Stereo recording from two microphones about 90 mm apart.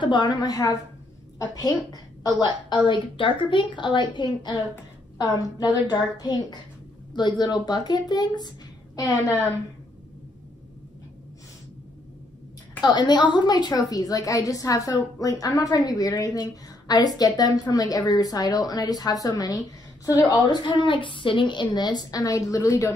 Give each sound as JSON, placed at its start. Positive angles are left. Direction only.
{"t": 0.0, "sound": "a woman's voice", "side_deg": 55}
{"t": 2.9, "sound": "a woman's voice", "side_deg": 65}
{"t": 5.1, "sound": "a woman's voice", "side_deg": 45}
{"t": 12.8, "sound": "a woman's voice", "side_deg": 55}